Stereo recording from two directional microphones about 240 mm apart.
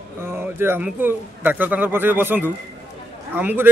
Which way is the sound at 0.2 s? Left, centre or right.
Centre.